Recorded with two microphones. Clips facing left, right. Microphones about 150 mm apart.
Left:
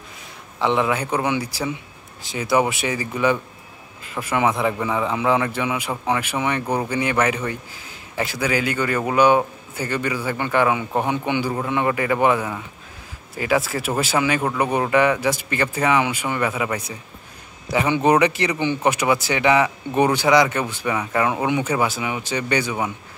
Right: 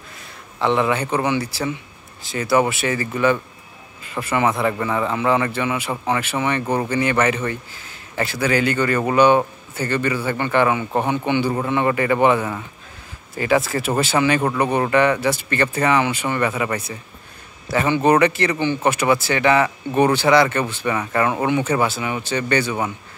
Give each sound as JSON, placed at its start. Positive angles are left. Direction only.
{"t": 0.6, "sound": "a man's voice", "side_deg": 10}
{"t": 2.3, "sound": "a man's voice", "side_deg": 10}
{"t": 4.1, "sound": "a man's voice", "side_deg": 5}